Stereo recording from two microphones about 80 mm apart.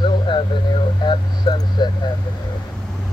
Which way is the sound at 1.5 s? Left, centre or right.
Left.